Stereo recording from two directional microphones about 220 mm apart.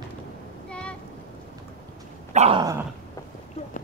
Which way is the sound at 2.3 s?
30° right (ahead or behind).